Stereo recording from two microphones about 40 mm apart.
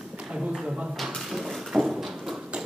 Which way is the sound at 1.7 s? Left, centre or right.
Centre.